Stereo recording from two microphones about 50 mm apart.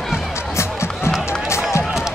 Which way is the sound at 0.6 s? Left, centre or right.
Left.